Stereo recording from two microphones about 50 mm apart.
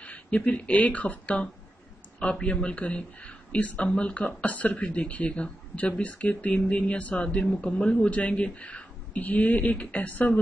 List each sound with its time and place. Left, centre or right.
0.0 s speech: left
7.4 s speech: centre